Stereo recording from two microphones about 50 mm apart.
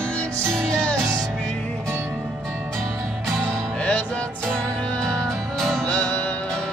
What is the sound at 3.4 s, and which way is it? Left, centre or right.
Music, left.